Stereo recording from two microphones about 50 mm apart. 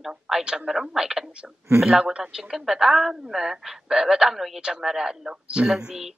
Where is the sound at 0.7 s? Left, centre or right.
Centre.